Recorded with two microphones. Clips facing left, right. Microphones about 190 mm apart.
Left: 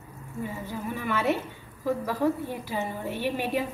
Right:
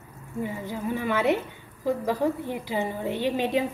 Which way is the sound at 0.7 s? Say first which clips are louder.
Right 4 dB; 15° right (ahead or behind).